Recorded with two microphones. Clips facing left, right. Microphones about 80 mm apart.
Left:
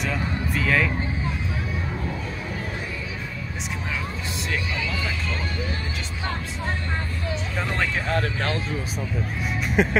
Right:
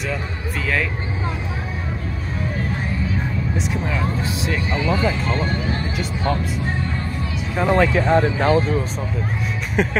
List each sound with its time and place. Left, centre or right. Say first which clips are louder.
4.7 s speech: right 9 dB; right
7.5 s speech: right 11 dB; centre
8.1 s speech: right 8 dB; right
9.8 s music: right 1 dB; centre